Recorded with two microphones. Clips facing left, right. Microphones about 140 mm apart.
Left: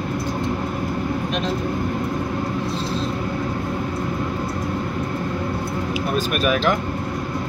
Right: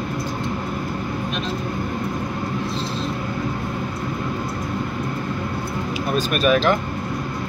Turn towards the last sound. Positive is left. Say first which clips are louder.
# right 2 dB
turn(degrees=10)  # may be behind; listen again after turning